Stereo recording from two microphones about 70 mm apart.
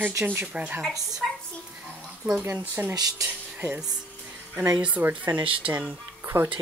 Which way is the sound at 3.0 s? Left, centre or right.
Right.